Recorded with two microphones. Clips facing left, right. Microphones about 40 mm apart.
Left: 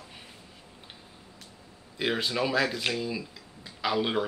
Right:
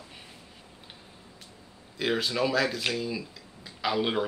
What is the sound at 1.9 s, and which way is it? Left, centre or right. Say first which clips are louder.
Speech: right 1 dB; centre.